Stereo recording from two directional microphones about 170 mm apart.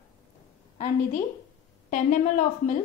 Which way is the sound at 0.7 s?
50° left (ahead or behind).